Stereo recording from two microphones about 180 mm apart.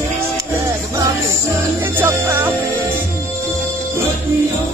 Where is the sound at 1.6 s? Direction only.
10° right (ahead or behind).